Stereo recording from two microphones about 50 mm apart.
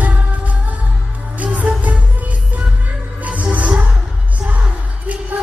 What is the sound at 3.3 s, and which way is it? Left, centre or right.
Music, right.